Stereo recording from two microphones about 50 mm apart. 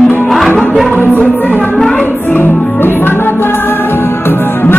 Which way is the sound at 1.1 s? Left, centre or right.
Left.